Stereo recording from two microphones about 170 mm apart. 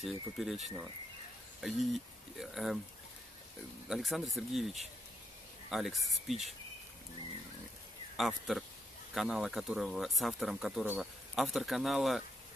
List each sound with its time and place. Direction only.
0.0 s speech: centre (ahead or behind)
3.9 s speech: centre (ahead or behind)
8.2 s speech: centre (ahead or behind)